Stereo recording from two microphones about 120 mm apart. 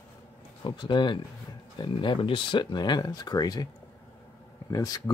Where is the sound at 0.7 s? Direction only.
40° left (ahead or behind).